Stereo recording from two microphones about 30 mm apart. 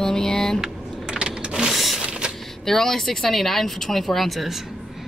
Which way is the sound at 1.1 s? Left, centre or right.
Right.